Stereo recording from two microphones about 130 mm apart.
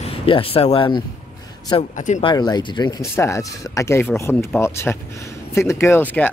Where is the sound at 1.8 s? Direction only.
70° left (ahead or behind).